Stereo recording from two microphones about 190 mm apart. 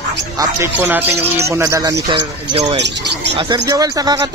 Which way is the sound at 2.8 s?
65° right (ahead or behind).